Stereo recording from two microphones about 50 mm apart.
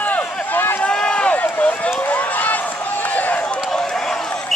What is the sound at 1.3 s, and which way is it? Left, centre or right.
Run, left.